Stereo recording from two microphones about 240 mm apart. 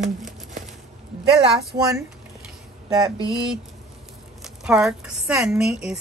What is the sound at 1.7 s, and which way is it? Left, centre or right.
Speech, centre.